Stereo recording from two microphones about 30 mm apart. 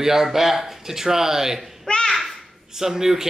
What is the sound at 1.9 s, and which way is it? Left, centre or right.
Babbling, left.